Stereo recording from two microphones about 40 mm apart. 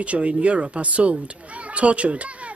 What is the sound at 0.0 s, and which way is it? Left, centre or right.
Speech, right.